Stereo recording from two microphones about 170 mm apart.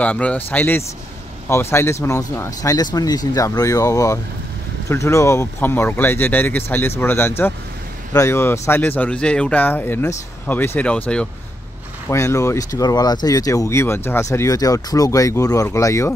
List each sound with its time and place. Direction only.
0.0 s speech: 10° left (ahead or behind)
12.1 s speech: 15° left (ahead or behind)